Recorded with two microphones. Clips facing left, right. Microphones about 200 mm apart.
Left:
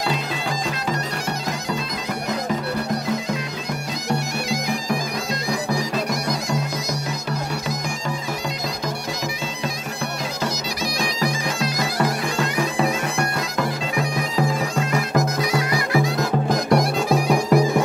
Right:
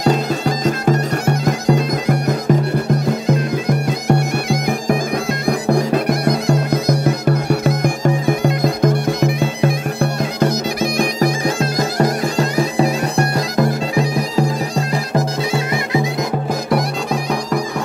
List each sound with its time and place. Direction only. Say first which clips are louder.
0.7 s bagpipes: right 9 dB; 50° right (ahead or behind)
4.1 s bagpipes: right 6 dB; 55° right (ahead or behind)
12.4 s bagpipes: right 6 dB; 35° right (ahead or behind)
14.9 s music: right 2 dB; 30° right (ahead or behind)
16.4 s music: left 1 dB; 5° right (ahead or behind)
17.1 s music: left 3 dB; 10° left (ahead or behind)